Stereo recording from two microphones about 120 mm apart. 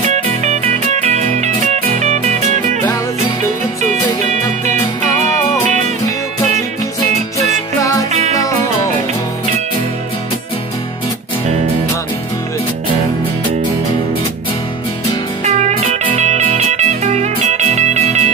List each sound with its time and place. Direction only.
0.1 s music: 75° right (ahead or behind)
7.8 s music: 30° left (ahead or behind)
8.1 s music: 75° right (ahead or behind)
15.4 s music: 70° right (ahead or behind)